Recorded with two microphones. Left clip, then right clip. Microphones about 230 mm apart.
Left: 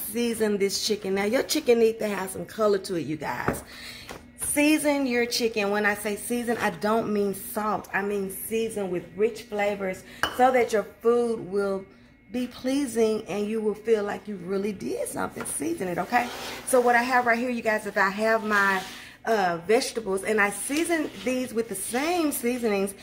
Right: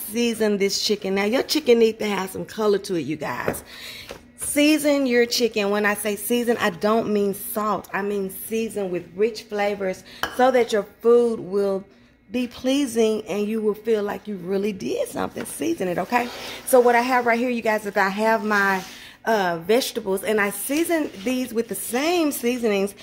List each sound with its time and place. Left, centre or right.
0.4 s speech: right
4.6 s a woman's voice: right